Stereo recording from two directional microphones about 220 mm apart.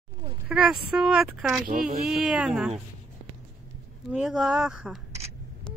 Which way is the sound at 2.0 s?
Centre (ahead or behind).